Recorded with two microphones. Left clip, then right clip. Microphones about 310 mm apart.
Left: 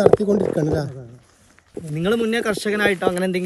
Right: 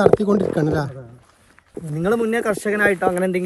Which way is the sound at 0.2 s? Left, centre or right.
Centre.